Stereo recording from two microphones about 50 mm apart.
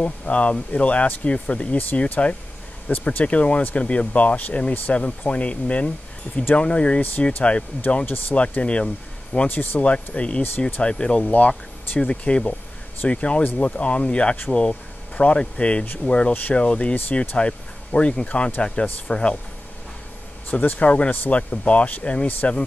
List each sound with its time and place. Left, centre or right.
0.0 s speech: left
1.8 s speech: left
7.9 s speech: left
8.4 s speech: left
9.5 s speech: left
9.8 s speech: left
11.2 s speech: left
12.0 s speech: centre
20.4 s speech: left
21.4 s speech: left